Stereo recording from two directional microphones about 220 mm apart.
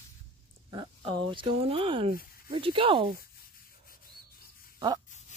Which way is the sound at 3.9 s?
40° left (ahead or behind).